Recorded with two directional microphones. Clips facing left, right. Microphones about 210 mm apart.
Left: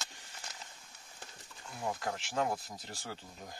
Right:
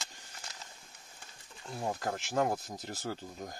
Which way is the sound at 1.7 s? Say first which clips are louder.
Right 2 dB; 40° right (ahead or behind).